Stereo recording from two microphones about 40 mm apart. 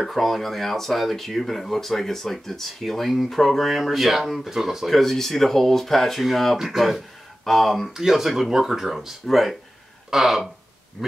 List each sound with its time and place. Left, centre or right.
0.0 s speech: centre
7.4 s speech: centre
7.9 s speech: centre